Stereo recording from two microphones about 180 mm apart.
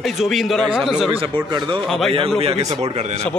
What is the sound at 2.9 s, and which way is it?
Speech, 35° right (ahead or behind).